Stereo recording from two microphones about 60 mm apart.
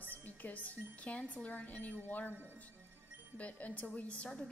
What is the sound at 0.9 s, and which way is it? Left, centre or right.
A woman's voice, left.